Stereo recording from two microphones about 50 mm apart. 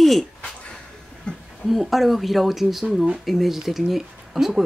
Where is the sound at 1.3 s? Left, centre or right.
Centre.